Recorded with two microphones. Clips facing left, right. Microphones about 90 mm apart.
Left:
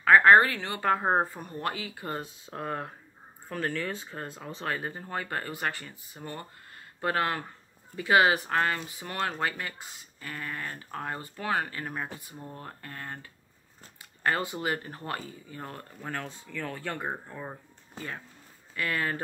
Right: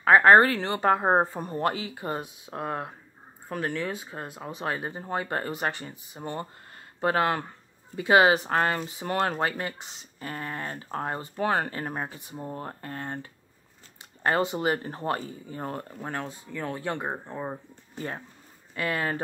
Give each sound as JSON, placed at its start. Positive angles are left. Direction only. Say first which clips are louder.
{"t": 0.0, "sound": "speech", "louder": "right 2 dB", "side_deg": -30}
{"t": 18.0, "sound": "speech", "louder": "right 4 dB", "side_deg": -35}
{"t": 18.8, "sound": "speech", "louder": "right 2 dB", "side_deg": -25}